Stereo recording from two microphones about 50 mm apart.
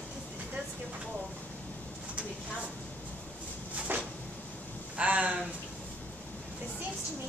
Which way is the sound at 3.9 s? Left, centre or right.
Right.